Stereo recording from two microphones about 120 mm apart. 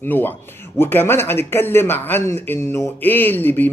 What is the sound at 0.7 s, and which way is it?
Speech, 20° left (ahead or behind).